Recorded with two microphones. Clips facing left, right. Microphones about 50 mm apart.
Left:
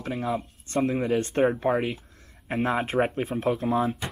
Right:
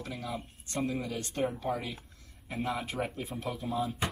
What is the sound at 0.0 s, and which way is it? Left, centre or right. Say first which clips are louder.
Speech: left 9 dB; left.